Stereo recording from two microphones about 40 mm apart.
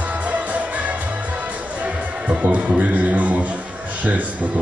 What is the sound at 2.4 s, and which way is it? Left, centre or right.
A man's voice, right.